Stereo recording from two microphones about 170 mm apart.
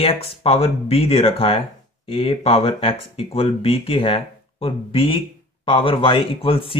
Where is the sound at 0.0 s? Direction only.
35° left (ahead or behind).